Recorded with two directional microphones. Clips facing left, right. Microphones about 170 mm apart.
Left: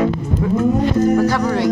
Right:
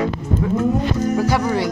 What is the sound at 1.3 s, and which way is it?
Music, 5° right (ahead or behind).